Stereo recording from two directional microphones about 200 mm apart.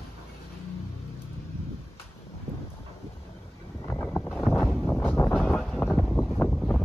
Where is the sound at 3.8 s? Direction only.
10° left (ahead or behind).